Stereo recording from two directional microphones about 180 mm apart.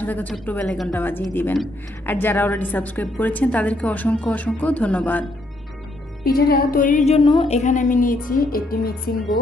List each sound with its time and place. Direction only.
0.0 s a woman's voice: 10° left (ahead or behind)
6.2 s speech: 60° left (ahead or behind)